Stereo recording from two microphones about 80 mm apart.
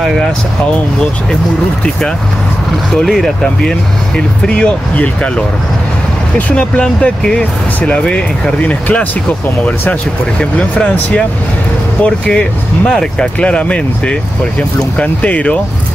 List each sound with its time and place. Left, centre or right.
2.9 s speech: centre
4.5 s speech: centre
6.3 s speech: centre
10.6 s speech: centre